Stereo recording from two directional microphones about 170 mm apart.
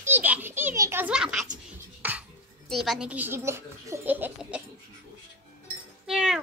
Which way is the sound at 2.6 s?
Centre (ahead or behind).